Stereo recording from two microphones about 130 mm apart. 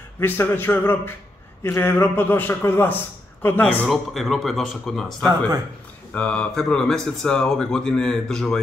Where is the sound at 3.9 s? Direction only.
Centre (ahead or behind).